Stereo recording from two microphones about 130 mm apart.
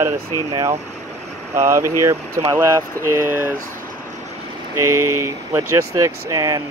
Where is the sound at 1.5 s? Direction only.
20° right (ahead or behind).